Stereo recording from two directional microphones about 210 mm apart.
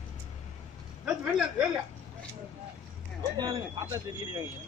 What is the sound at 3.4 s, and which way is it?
Speech, 20° right (ahead or behind).